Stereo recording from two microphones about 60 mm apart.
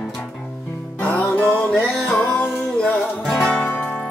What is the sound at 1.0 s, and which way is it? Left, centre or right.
Music, left.